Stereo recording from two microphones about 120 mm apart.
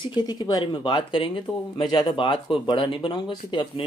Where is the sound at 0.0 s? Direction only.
35° left (ahead or behind).